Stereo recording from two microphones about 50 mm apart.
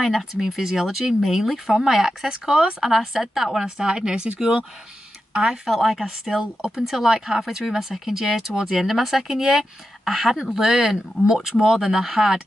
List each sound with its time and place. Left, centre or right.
0.0 s speech: centre
3.6 s speech: centre